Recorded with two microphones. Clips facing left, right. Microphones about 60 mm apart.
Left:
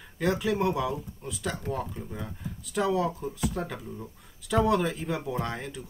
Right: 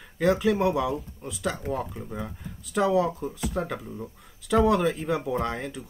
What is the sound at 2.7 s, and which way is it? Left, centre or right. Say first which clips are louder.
Speech: right 4 dB; centre.